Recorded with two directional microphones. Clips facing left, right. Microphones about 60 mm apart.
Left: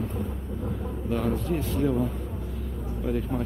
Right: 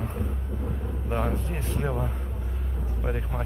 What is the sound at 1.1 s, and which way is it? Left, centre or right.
Speech, right.